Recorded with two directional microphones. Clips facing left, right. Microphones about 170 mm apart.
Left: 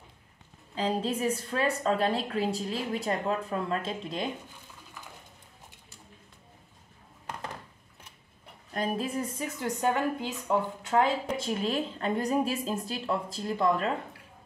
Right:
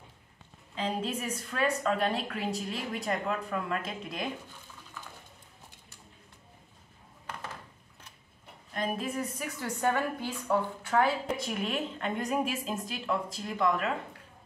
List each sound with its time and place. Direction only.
0.7 s a woman's voice: 35° left (ahead or behind)
8.7 s a woman's voice: 35° left (ahead or behind)